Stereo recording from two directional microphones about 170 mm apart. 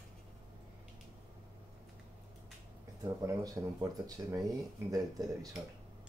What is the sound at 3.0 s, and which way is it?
Speech, 20° right (ahead or behind).